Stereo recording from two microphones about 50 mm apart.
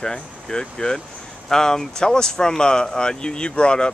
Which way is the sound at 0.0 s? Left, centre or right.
Centre.